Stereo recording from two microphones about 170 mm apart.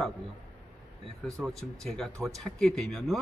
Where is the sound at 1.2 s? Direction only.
Centre (ahead or behind).